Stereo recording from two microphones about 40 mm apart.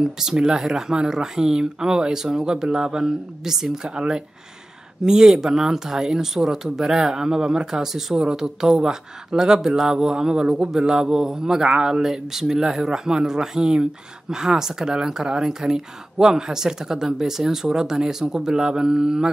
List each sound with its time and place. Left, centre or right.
0.0 s speech: centre